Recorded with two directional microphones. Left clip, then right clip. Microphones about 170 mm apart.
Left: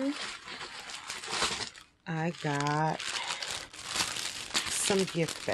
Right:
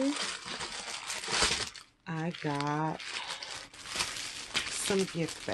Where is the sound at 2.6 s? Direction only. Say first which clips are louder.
Left 5 dB; 60° left (ahead or behind).